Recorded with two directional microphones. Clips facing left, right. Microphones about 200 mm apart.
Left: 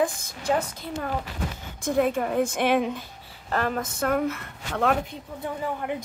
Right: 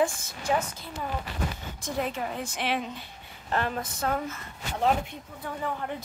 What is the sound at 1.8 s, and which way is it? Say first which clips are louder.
A woman's voice: left 8 dB; 50° left (ahead or behind).